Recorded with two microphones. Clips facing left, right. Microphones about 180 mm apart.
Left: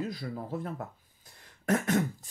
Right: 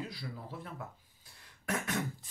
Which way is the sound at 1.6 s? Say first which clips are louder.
Left 9 dB; 45° left (ahead or behind).